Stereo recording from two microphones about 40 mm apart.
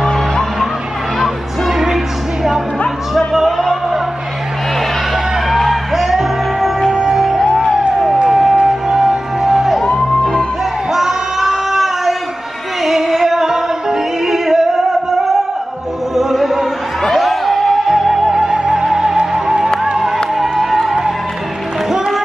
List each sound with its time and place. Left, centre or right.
0.0 s music: centre
1.7 s music: centre
3.2 s music: centre
5.1 s music: centre
10.9 s child singing: centre
12.8 s music: centre
20.3 s music: centre